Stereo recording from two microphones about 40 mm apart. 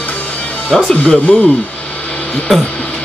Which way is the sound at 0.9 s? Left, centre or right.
Left.